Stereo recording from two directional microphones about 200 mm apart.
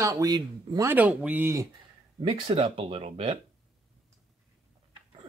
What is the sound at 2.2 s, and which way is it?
Speech, 25° right (ahead or behind).